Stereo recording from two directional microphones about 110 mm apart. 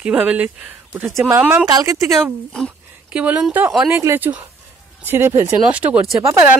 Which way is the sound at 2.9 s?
15° right (ahead or behind).